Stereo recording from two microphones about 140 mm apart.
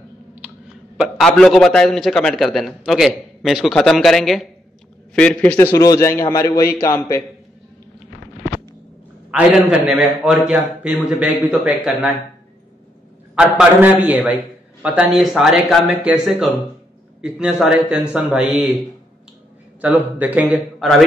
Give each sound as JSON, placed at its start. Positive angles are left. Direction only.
{"t": 0.9, "sound": "a man's voice", "side_deg": 0}
{"t": 9.3, "sound": "a man's voice", "side_deg": -10}
{"t": 13.3, "sound": "a man's voice", "side_deg": -5}
{"t": 17.2, "sound": "a man's voice", "side_deg": -5}